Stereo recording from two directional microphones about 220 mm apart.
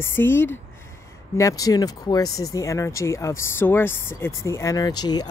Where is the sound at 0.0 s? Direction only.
10° left (ahead or behind).